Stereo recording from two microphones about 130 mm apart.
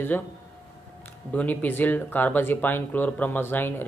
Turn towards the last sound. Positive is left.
turn(degrees=15)  # may be behind; listen again after turning